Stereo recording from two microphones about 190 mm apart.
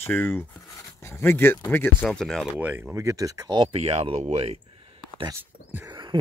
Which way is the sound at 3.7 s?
30° right (ahead or behind).